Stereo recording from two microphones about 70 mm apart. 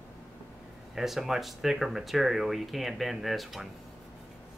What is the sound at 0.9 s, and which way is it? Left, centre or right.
Speech, centre.